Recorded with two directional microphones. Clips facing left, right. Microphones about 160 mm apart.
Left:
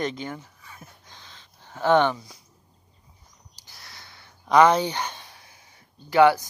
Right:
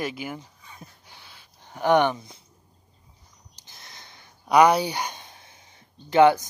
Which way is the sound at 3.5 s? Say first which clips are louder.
Even; 20° right (ahead or behind).